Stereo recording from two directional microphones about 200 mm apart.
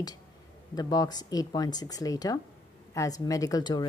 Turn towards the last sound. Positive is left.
turn(degrees=20)  # may be behind; listen again after turning